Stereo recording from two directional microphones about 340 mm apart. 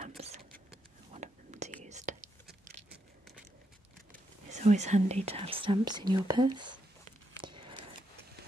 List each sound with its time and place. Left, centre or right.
1.1 s whispering: centre
4.5 s speech: right
7.4 s a sound: centre